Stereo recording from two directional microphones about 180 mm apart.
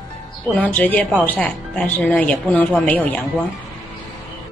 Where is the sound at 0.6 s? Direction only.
10° left (ahead or behind).